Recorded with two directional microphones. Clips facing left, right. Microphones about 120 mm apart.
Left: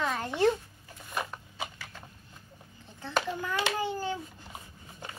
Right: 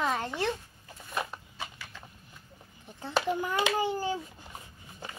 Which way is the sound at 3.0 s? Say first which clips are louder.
Right 2 dB; 20° right (ahead or behind).